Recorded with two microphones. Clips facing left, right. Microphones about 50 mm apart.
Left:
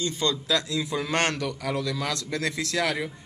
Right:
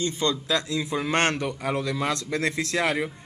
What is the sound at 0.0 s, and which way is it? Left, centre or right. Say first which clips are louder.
A man's voice: right 1 dB; right.